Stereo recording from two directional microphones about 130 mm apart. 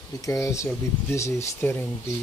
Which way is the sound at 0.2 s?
25° left (ahead or behind).